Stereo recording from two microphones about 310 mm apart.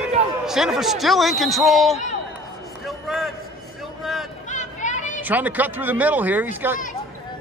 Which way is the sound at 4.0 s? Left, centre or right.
Centre.